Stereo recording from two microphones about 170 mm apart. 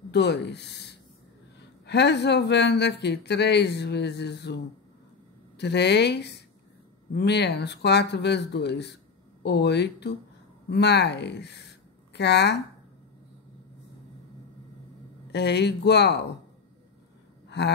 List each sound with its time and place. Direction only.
0.1 s speech: 85° left
5.6 s speech: 80° left
15.3 s speech: 85° left